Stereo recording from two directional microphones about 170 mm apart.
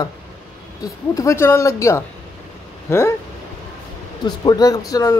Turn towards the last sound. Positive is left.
turn(degrees=20)  # may be behind; listen again after turning